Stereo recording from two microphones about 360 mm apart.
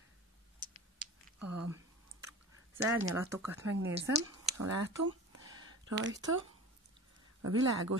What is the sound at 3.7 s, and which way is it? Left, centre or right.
Speech, right.